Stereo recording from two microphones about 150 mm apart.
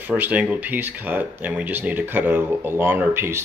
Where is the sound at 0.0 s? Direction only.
10° right (ahead or behind).